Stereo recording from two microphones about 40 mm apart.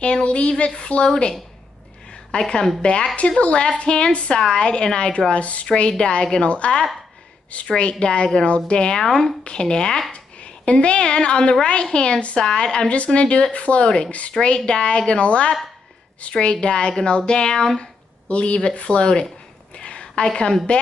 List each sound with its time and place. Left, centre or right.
0.0 s a woman's voice: left
2.3 s a woman's voice: left
5.7 s a woman's voice: left
14.3 s a woman's voice: centre
14.7 s a woman's voice: left
18.3 s a woman's voice: left
19.7 s a sound: left
20.2 s a woman's voice: left